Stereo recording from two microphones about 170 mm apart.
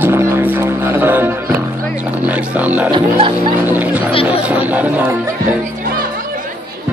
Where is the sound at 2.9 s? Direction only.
30° right (ahead or behind).